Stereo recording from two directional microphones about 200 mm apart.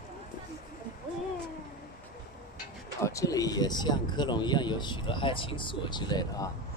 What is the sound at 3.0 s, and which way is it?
Speech, 15° left (ahead or behind).